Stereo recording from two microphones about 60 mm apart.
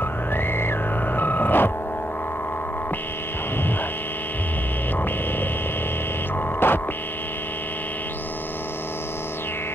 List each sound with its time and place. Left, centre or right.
0.4 s music: left
6.6 s music: left